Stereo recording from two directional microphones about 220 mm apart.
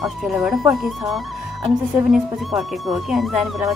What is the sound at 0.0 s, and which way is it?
Speech, centre (ahead or behind).